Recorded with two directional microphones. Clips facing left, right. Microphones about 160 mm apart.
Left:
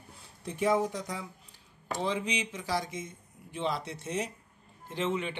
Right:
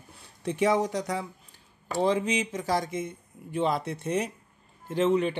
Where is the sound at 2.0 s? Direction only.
45° right (ahead or behind).